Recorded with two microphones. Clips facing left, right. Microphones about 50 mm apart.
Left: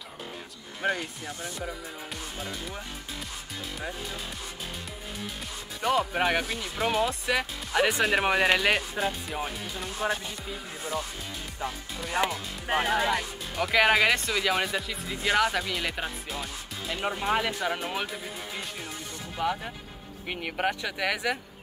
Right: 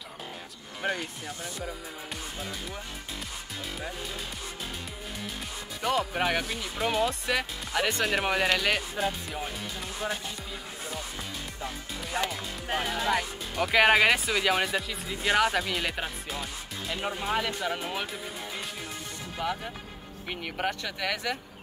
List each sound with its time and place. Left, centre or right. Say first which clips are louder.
0.8 s speech: left 2 dB; centre
5.8 s speech: left 2 dB; centre
12.3 s speech: left 2 dB; centre
13.1 s speech: right 1 dB; centre
19.3 s speech: left 3 dB; centre